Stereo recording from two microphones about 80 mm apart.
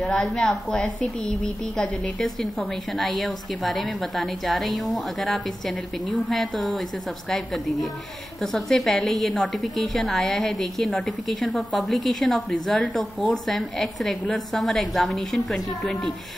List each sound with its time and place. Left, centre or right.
0.0 s a woman's voice: centre
11.3 s a woman's voice: centre
11.7 s a woman's voice: centre